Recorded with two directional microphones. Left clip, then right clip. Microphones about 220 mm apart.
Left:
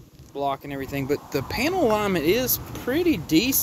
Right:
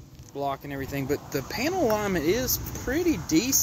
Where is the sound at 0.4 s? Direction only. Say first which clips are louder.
Left 3 dB; 5° left (ahead or behind).